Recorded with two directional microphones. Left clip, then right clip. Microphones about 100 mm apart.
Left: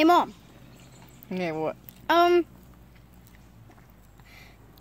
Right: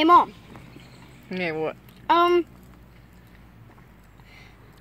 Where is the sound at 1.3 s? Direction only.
40° left (ahead or behind).